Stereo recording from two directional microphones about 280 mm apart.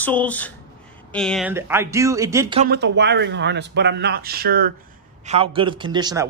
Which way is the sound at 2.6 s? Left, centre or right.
Right.